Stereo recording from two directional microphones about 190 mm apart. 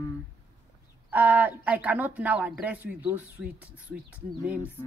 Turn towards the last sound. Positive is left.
turn(degrees=-10)  # may be behind; listen again after turning